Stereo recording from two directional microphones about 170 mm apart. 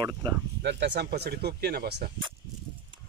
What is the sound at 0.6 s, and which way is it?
Speech, 85° right.